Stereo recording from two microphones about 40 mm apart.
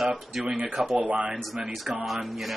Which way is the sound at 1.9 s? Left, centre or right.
Centre.